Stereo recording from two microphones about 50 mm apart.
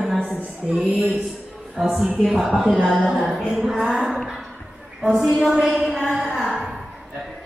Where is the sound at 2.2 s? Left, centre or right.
Centre.